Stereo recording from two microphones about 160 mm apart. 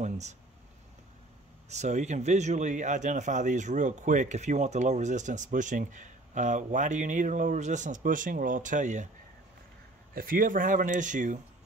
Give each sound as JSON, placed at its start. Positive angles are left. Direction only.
{"t": 0.0, "sound": "a sound", "side_deg": -45}
{"t": 1.7, "sound": "speech", "side_deg": -45}
{"t": 10.1, "sound": "speech", "side_deg": -60}